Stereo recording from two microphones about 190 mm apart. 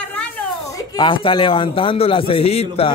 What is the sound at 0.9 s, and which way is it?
Speech, 25° left (ahead or behind).